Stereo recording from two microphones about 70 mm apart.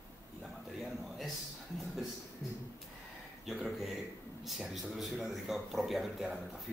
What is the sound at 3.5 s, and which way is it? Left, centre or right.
A man's voice, centre.